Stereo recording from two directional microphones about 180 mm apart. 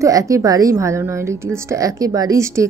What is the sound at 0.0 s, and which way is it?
A woman's voice, 20° right (ahead or behind).